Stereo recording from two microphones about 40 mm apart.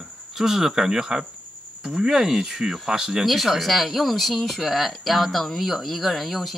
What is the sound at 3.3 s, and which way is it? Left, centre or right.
Speech, centre.